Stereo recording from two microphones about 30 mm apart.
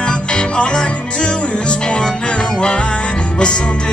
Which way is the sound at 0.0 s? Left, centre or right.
Left.